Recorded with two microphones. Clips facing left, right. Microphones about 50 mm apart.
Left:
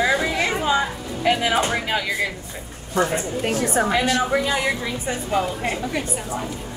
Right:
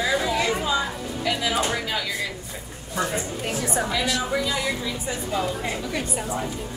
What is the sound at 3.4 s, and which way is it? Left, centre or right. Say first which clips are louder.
Speech: left 6 dB; left.